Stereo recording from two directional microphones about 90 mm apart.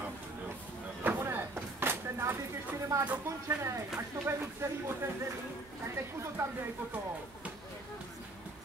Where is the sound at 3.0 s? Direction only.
15° right (ahead or behind).